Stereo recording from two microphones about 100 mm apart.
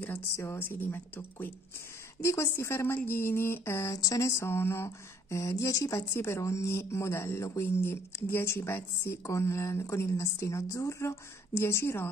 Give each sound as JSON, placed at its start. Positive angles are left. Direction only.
{"t": 0.0, "sound": "speech", "side_deg": 25}